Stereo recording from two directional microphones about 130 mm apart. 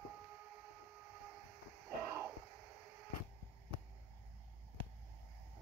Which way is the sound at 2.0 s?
20° right (ahead or behind).